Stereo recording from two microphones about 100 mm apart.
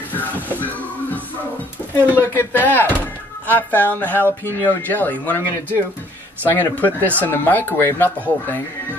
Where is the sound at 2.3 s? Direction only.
20° left (ahead or behind).